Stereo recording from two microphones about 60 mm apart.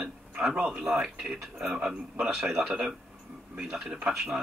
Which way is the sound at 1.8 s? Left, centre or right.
Centre.